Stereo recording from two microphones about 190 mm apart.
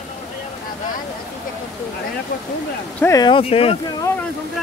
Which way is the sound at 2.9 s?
15° left (ahead or behind).